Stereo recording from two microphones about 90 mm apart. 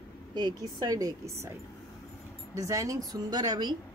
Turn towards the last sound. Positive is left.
turn(degrees=-50)  # may be behind; listen again after turning